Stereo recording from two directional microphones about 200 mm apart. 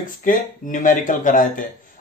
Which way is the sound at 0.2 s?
40° left (ahead or behind).